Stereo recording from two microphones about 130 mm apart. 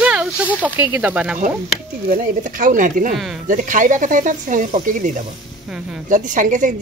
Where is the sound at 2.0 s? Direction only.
65° right (ahead or behind).